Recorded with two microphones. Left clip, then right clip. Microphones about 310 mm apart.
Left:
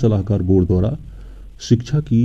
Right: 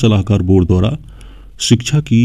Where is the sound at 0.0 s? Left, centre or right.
Right.